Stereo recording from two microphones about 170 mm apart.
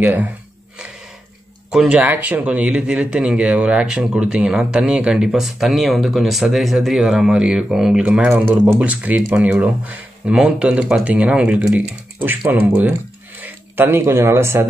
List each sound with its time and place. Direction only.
0.0 s speech: 10° right (ahead or behind)
1.7 s speech: 5° right (ahead or behind)